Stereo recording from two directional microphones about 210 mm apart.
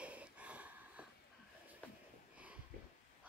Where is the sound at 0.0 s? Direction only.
5° right (ahead or behind).